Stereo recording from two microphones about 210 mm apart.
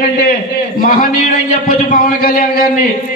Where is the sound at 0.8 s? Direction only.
40° left (ahead or behind).